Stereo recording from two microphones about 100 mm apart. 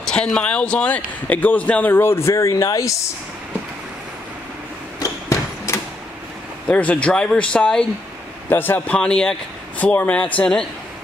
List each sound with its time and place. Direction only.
0.0 s speech: 10° left (ahead or behind); by 3.0 s 30° left (ahead or behind)
5.0 s a sound: 30° left (ahead or behind)
6.7 s speech: 15° left (ahead or behind)
8.5 s speech: 20° left (ahead or behind)